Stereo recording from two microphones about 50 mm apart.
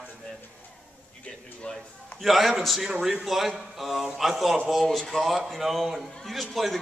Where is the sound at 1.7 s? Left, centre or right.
Left.